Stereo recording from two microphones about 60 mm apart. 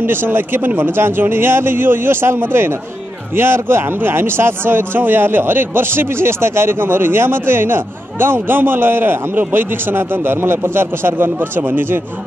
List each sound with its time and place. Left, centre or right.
0.0 s a man's voice: right